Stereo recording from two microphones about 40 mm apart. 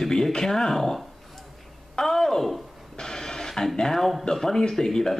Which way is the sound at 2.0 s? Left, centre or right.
Centre.